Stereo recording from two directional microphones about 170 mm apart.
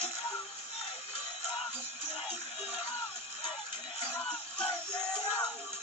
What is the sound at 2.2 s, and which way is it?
Music, 35° left (ahead or behind).